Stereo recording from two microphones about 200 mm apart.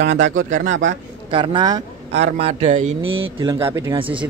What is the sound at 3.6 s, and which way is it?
Speech, 20° right (ahead or behind).